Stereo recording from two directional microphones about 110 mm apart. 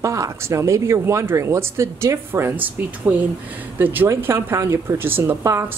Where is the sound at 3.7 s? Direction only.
15° right (ahead or behind).